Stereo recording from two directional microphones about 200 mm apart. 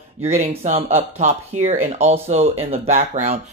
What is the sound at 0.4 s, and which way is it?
Speech, 30° right (ahead or behind).